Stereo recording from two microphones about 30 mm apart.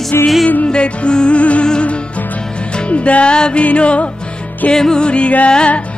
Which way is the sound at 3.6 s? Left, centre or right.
Left.